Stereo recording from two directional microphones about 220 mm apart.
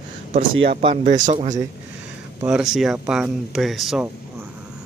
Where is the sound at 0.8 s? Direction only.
30° right (ahead or behind).